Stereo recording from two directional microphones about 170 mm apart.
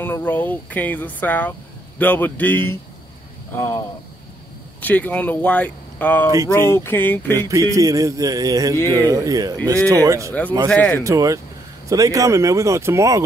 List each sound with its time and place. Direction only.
0.0 s speech: 10° left (ahead or behind)
7.3 s speech: 20° right (ahead or behind)
10.7 s speech: 10° left (ahead or behind)
11.1 s speech: 20° right (ahead or behind)